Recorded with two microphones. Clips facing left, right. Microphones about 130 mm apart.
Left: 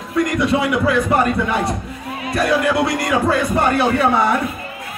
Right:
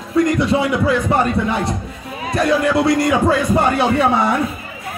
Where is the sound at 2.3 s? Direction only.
25° right (ahead or behind).